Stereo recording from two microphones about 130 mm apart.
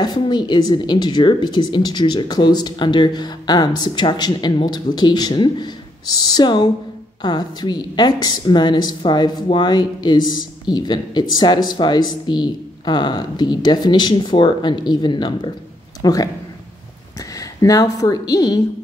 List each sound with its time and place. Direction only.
0.0 s speech: 35° left (ahead or behind)
17.4 s speech: 25° left (ahead or behind)